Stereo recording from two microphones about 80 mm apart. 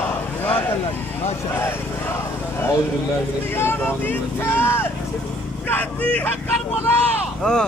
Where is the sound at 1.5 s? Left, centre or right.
Left.